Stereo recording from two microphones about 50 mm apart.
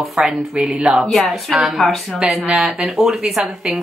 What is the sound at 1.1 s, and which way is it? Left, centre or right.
A woman's voice, centre.